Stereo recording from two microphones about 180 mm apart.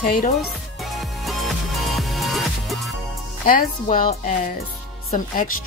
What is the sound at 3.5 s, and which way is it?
Speech, 50° left (ahead or behind).